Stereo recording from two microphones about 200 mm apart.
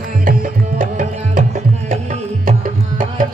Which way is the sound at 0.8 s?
40° right (ahead or behind).